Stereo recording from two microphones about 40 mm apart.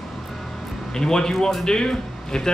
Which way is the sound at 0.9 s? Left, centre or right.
Centre.